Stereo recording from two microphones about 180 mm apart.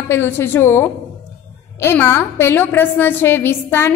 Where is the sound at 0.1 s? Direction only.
10° left (ahead or behind).